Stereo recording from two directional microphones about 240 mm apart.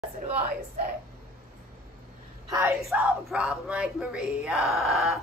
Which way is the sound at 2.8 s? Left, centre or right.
Centre.